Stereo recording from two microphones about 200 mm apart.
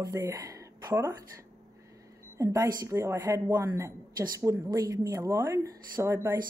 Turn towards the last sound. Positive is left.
turn(degrees=-10)  # may be behind; listen again after turning